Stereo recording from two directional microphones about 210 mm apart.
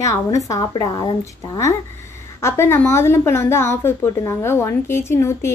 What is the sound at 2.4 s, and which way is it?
A woman's voice, 10° left (ahead or behind).